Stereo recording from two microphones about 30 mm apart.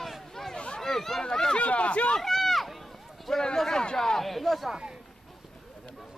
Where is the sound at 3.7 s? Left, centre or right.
Left.